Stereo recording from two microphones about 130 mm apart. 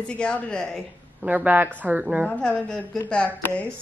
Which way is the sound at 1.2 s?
10° right (ahead or behind).